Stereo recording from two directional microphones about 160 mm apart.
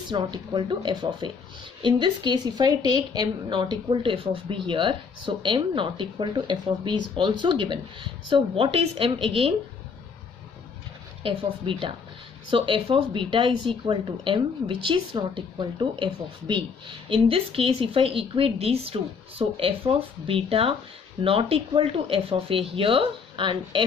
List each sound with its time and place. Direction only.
0.1 s a woman's voice: 30° right (ahead or behind)
11.7 s speech: 30° right (ahead or behind)